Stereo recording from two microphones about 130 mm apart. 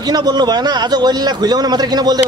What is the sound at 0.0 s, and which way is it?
A man's voice, 30° right (ahead or behind).